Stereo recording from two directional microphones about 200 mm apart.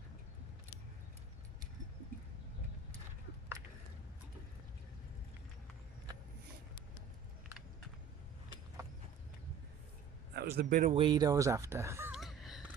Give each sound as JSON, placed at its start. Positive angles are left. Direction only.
{"t": 10.3, "sound": "speech", "side_deg": -50}
{"t": 11.0, "sound": "speech", "side_deg": -20}
{"t": 12.2, "sound": "gasp", "side_deg": 0}